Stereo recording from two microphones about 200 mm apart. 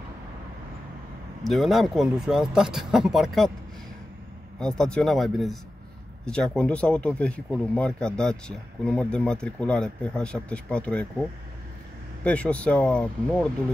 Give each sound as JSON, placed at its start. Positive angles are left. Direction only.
{"t": 1.4, "sound": "speech", "side_deg": 0}
{"t": 4.6, "sound": "speech", "side_deg": 5}